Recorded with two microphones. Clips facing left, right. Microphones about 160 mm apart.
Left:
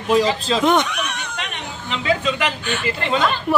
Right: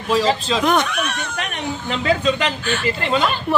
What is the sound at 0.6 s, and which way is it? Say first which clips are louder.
Speech: left 1 dB; 20° left (ahead or behind).